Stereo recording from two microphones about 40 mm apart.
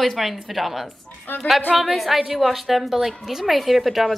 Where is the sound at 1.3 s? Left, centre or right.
Left.